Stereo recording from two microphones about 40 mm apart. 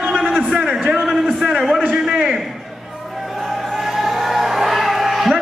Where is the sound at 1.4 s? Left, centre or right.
Centre.